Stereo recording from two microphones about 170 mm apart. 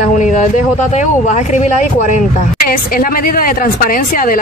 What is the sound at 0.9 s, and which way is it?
Speech, 40° left (ahead or behind).